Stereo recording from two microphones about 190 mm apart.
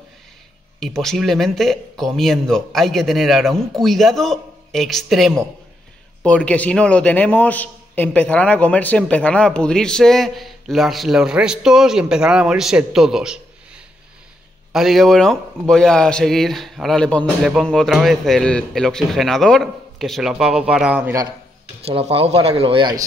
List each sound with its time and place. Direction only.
0.7 s a man's voice: centre (ahead or behind)
21.8 s speech: 30° right (ahead or behind)